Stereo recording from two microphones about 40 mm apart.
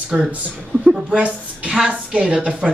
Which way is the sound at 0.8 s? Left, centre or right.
Right.